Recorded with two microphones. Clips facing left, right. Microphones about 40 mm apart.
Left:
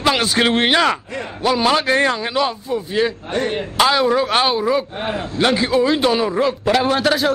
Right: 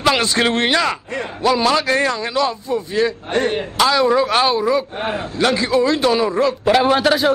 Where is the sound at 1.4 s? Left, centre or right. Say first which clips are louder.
Right 1 dB; centre.